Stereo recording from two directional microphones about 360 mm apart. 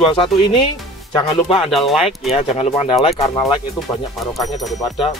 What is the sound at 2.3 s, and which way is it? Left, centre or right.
Speech, centre.